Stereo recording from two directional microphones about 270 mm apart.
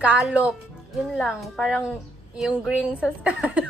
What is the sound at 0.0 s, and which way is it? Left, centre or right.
Speech, centre.